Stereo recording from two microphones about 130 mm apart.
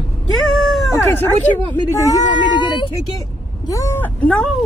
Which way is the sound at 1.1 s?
15° left (ahead or behind).